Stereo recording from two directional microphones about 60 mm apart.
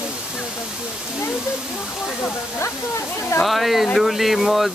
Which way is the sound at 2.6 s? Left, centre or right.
Left.